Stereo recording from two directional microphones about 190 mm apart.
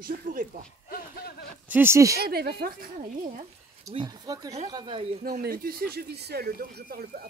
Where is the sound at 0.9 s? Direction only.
55° left (ahead or behind).